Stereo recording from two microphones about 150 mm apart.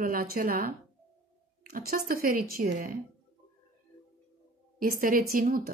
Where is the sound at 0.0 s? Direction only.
70° right (ahead or behind).